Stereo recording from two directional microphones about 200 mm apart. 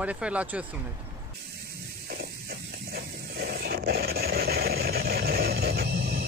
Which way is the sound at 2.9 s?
55° right (ahead or behind).